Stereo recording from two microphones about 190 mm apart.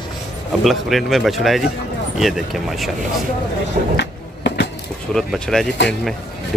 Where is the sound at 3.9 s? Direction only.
65° left (ahead or behind).